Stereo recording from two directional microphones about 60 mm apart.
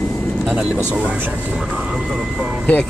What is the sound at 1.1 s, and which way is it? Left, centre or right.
Speech, right.